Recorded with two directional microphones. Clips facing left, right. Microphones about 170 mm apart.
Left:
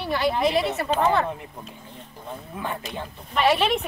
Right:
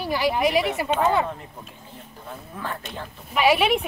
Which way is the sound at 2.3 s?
20° left (ahead or behind).